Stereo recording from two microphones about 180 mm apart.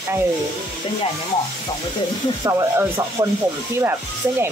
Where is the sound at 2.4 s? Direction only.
15° right (ahead or behind).